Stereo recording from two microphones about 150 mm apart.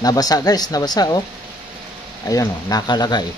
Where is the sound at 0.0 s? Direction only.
25° left (ahead or behind).